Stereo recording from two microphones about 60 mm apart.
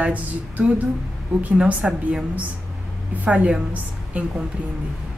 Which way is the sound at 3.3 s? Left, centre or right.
Right.